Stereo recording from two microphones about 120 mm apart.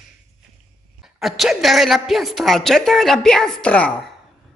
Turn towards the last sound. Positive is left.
turn(degrees=10)  # may be behind; listen again after turning